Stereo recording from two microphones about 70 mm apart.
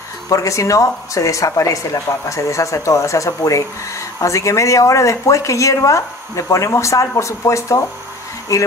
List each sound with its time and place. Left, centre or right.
0.3 s speech: left